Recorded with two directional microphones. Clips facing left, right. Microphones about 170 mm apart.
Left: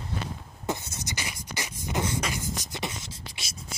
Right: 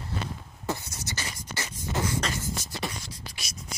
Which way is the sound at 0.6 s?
20° left (ahead or behind).